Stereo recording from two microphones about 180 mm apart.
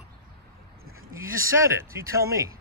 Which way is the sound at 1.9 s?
15° right (ahead or behind).